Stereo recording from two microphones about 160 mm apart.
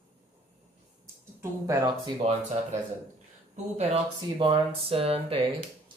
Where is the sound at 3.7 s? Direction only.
35° right (ahead or behind).